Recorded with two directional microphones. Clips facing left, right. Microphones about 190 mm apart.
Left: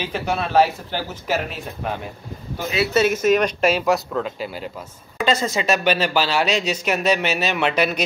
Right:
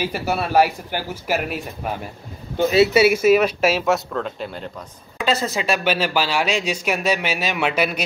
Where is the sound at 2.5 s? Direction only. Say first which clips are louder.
Right 8 dB; 25° right (ahead or behind).